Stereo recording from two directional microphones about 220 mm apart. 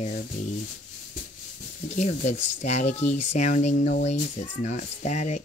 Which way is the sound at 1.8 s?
35° left (ahead or behind).